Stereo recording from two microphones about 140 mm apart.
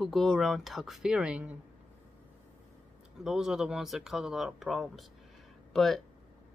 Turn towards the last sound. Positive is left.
turn(degrees=0)  # may be behind; listen again after turning